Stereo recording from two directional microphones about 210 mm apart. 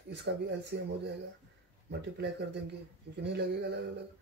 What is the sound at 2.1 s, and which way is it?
Speech, 55° right (ahead or behind).